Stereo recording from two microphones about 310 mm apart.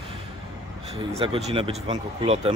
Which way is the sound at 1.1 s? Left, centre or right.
Centre.